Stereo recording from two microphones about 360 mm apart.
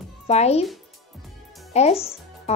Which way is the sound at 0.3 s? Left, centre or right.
Centre.